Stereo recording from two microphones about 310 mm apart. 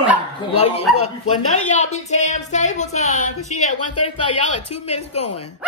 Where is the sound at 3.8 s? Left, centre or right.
Left.